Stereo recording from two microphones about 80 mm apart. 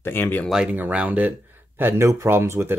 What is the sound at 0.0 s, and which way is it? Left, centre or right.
Speech, left.